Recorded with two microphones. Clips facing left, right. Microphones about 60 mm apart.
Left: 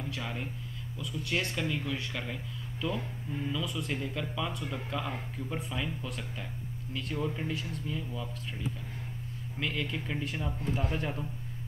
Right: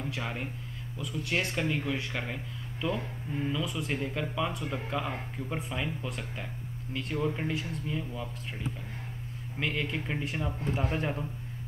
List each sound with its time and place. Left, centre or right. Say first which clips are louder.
0.0 s speech: right 2 dB; centre
9.6 s speech: right 2 dB; right